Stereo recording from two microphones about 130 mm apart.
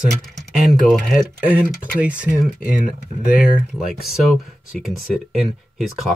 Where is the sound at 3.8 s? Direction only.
5° right (ahead or behind).